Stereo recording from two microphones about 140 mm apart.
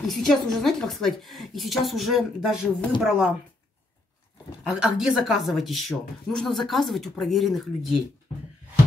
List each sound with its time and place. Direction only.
0.0 s speech: centre (ahead or behind)
4.7 s speech: 5° right (ahead or behind)